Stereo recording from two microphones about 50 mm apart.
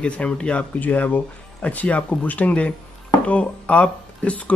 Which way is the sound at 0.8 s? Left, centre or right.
Left.